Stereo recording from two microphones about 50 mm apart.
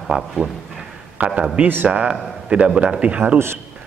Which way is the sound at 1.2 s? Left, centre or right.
Right.